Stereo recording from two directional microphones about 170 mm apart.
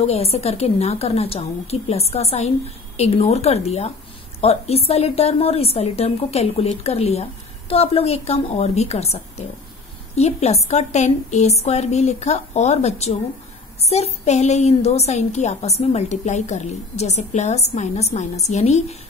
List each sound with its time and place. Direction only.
0.0 s a woman's voice: 35° left (ahead or behind)